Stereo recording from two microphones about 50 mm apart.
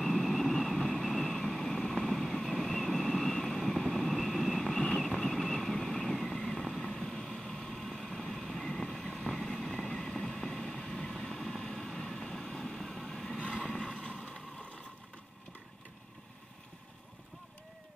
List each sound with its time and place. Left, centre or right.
0.0 s vehicle: centre
1.2 s vehicle: centre
13.4 s vehicle: left
13.7 s a sound: centre